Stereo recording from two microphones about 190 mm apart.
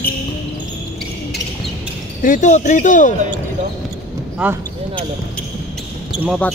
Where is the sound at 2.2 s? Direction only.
40° left (ahead or behind).